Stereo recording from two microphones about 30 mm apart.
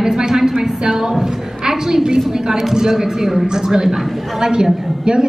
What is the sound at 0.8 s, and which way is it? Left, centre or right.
A woman's voice, centre.